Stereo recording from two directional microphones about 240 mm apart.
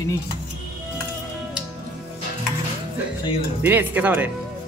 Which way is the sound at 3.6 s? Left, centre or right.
Centre.